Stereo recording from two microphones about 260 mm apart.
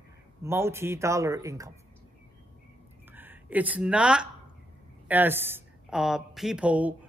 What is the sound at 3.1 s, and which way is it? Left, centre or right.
A woman's voice, centre.